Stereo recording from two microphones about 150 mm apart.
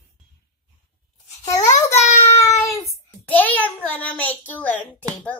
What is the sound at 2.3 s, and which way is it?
Child singing, 20° left (ahead or behind).